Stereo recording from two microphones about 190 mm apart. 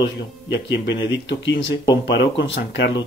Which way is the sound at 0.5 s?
65° left (ahead or behind).